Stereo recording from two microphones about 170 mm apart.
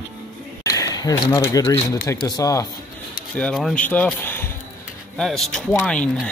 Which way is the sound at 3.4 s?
5° left (ahead or behind).